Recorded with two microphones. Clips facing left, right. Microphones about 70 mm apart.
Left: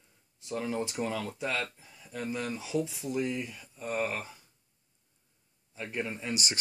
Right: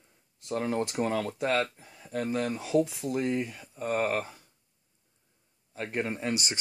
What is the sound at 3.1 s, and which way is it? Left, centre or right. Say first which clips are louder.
Speech: right 3 dB; right.